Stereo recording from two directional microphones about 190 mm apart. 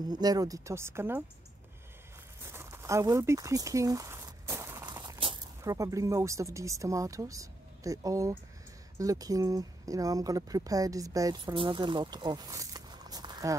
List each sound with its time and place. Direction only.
0.1 s speech: 20° right (ahead or behind)
2.5 s speech: 15° right (ahead or behind)